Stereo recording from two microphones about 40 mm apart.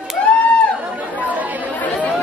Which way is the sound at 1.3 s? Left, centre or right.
Right.